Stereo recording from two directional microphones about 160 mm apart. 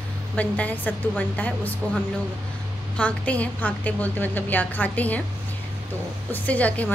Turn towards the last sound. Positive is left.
turn(degrees=10)  # may be behind; listen again after turning